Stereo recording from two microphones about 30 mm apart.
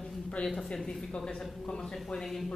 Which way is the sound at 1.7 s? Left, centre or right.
Left.